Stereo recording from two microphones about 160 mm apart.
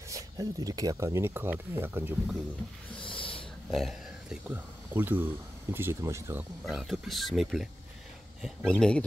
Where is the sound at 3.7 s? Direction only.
Centre (ahead or behind).